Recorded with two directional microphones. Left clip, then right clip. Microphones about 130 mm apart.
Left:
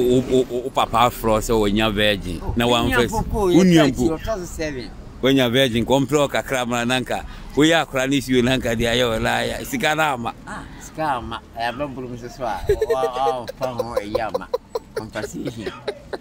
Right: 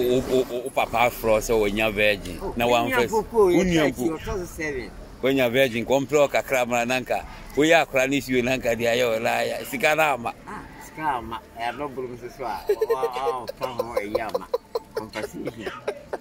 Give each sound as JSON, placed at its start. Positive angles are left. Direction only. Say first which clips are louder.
{"t": 0.1, "sound": "speech", "louder": "left 4 dB", "side_deg": 30}
{"t": 3.8, "sound": "a man's voice", "louder": "left 5 dB", "side_deg": 25}
{"t": 15.2, "sound": "speech", "louder": "left 3 dB", "side_deg": 15}